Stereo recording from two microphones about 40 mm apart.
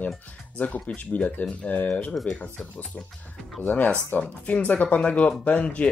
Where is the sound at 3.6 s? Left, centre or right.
Left.